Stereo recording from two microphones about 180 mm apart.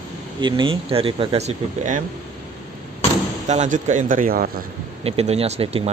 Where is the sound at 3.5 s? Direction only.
40° right (ahead or behind).